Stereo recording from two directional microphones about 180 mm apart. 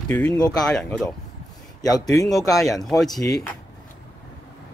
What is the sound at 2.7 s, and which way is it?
Speech, centre (ahead or behind).